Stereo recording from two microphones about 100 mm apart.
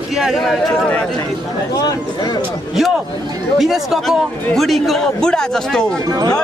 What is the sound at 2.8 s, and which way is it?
A man's voice, 5° right (ahead or behind).